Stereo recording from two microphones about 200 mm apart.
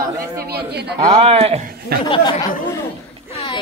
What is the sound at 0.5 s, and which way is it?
Speech, 55° right (ahead or behind).